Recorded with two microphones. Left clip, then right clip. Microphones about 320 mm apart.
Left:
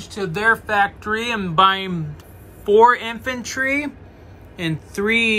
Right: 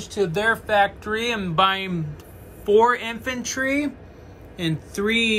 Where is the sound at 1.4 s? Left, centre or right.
Left.